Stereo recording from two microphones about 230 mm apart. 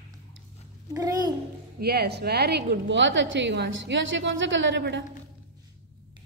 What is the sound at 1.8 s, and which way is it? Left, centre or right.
A woman's voice, right.